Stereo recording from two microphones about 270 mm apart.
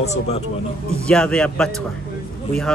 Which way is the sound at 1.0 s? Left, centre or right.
Centre.